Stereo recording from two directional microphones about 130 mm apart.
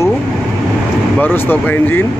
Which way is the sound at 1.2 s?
15° left (ahead or behind).